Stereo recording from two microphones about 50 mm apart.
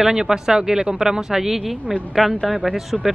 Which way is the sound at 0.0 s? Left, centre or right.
Centre.